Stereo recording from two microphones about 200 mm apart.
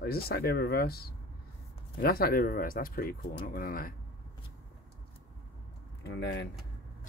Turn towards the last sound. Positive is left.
turn(degrees=60)  # may be behind; listen again after turning